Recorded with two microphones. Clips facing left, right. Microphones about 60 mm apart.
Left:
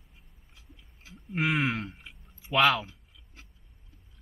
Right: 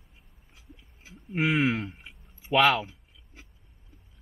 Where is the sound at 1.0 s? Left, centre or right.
Right.